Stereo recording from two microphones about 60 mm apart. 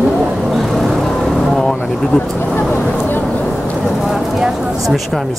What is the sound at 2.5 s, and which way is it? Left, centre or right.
Vehicle, left.